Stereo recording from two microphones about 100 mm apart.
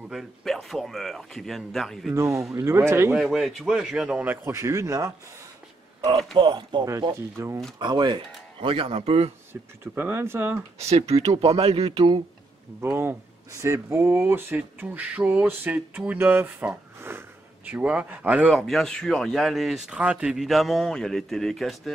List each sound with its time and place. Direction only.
0.1 s speech: centre (ahead or behind)
2.1 s speech: 30° right (ahead or behind)
3.2 s speech: centre (ahead or behind); by 5.1 s 30° right (ahead or behind)
5.9 s a sound: 65° right (ahead or behind)
6.3 s speech: 50° right (ahead or behind)
7.3 s speech: 30° right (ahead or behind)
7.8 s speech: 50° right (ahead or behind)
8.5 s speech: 60° right (ahead or behind)
9.5 s speech: 20° right (ahead or behind)
10.8 s speech: 90° right; by 12.0 s 75° right (ahead or behind)
12.8 s speech: 25° right (ahead or behind)
18.5 s speech: centre (ahead or behind)